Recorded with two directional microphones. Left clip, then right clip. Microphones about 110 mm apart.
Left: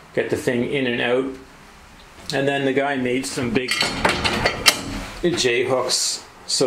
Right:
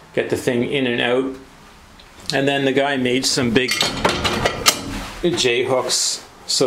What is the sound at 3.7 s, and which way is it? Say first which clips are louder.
Dishes: right 1 dB; 10° right (ahead or behind).